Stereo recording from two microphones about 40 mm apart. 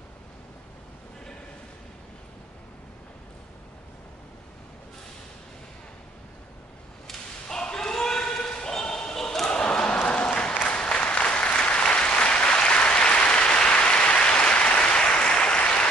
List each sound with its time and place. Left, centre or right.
7.1 s thump: centre
9.5 s a sound: left
10.7 s applause: left